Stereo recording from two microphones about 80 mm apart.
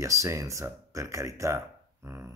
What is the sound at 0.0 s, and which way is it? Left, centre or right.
Speech, right.